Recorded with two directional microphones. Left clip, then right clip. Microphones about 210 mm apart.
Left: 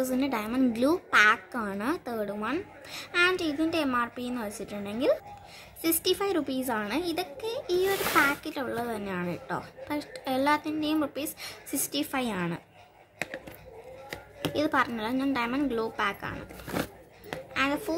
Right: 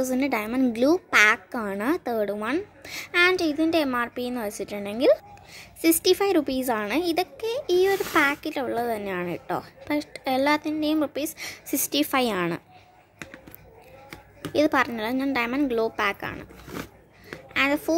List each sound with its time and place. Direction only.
0.0 s a woman's voice: 30° right (ahead or behind)
14.5 s a woman's voice: 30° right (ahead or behind)
17.6 s speech: 30° right (ahead or behind)